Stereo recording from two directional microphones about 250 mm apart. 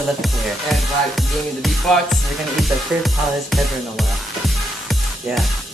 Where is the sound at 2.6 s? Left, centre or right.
Centre.